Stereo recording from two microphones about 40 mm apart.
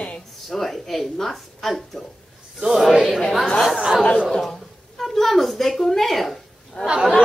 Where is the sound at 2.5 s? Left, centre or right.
Centre.